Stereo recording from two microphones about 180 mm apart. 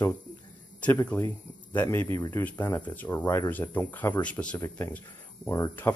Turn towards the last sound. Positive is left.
turn(degrees=15)  # may be behind; listen again after turning